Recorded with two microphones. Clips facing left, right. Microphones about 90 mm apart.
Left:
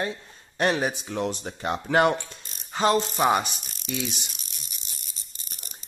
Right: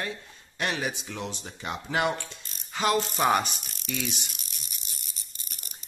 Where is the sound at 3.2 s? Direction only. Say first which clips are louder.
Left 2 dB; 20° left (ahead or behind).